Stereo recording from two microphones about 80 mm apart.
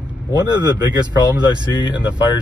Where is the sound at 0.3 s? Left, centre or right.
Right.